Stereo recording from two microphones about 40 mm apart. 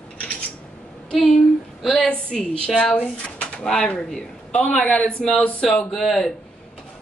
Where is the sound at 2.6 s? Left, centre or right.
Left.